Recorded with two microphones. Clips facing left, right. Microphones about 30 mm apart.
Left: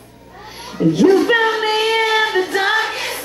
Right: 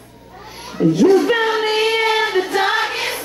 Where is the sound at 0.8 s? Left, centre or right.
Centre.